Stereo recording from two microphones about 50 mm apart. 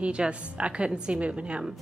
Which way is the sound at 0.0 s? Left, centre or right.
Right.